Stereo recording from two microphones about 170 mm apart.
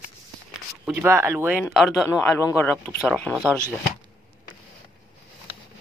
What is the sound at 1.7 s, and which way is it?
Speech, centre (ahead or behind).